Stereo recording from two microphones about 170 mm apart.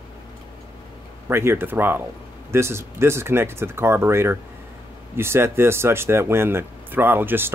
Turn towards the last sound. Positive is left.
turn(degrees=-10)  # may be behind; listen again after turning